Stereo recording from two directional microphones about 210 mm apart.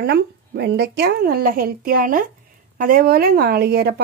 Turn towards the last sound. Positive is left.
turn(degrees=-50)  # may be behind; listen again after turning